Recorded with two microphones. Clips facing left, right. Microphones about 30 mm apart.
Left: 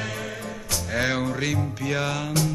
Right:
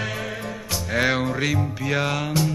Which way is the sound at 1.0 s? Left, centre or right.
Centre.